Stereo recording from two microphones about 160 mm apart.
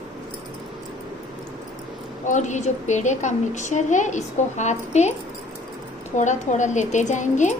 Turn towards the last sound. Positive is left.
turn(degrees=50)  # may be behind; listen again after turning